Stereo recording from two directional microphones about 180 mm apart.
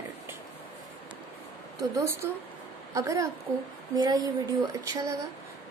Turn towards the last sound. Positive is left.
turn(degrees=-20)  # may be behind; listen again after turning